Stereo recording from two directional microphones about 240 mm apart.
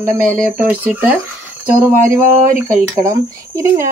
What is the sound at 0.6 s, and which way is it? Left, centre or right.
Speech, centre.